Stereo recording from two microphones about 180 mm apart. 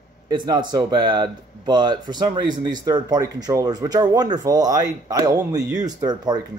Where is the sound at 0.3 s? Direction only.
25° right (ahead or behind).